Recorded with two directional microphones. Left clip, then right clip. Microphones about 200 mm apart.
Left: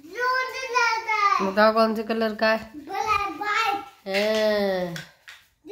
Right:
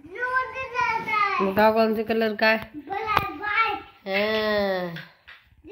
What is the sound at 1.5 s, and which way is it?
Speech, centre (ahead or behind).